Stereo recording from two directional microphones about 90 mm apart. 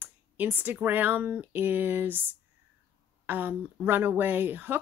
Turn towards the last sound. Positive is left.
turn(degrees=-20)  # may be behind; listen again after turning